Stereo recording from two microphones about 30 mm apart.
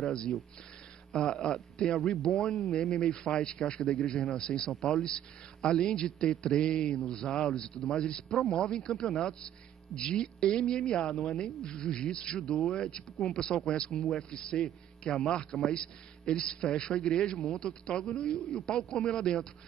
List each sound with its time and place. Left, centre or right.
0.0 s a man's voice: left
1.4 s a man's voice: left